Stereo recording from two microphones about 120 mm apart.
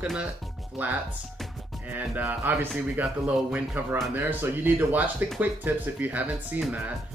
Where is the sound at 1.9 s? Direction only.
15° right (ahead or behind).